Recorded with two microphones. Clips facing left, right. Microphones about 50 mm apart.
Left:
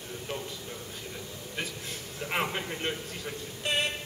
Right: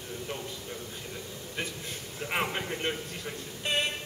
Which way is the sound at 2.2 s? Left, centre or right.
Centre.